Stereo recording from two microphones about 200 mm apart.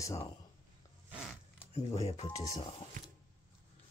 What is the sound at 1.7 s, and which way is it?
Speech, 30° left (ahead or behind).